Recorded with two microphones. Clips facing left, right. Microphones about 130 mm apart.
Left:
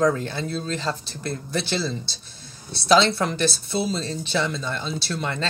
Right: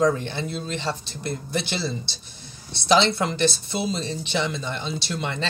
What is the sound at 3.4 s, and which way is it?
Speech, 20° right (ahead or behind).